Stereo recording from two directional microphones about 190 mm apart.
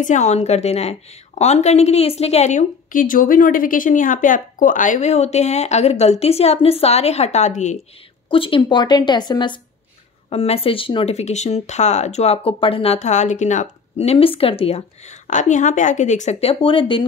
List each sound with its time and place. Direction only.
0.0 s a woman's voice: 40° left (ahead or behind)
8.3 s a woman's voice: 25° left (ahead or behind)